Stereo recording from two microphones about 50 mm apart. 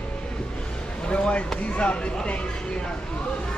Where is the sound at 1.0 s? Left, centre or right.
Left.